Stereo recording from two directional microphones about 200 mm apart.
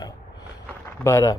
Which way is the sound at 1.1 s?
15° left (ahead or behind).